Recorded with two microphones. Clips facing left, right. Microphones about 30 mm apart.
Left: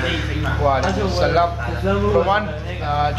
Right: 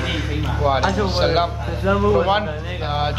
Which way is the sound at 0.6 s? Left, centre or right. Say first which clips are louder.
Even; centre.